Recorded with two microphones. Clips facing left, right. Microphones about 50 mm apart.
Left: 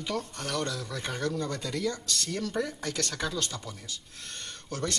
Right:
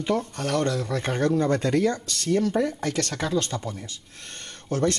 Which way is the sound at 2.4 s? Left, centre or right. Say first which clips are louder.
Right 8 dB; centre.